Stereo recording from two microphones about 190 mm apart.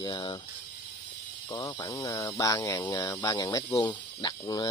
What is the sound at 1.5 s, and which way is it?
Speech, 20° left (ahead or behind).